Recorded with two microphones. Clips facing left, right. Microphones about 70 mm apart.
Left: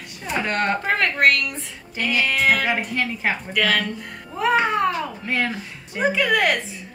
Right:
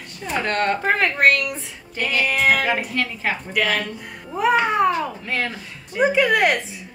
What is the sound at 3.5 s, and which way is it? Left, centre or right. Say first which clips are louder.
Speech: left 1 dB; centre.